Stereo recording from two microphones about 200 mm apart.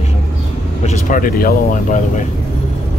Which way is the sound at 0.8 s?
40° left (ahead or behind).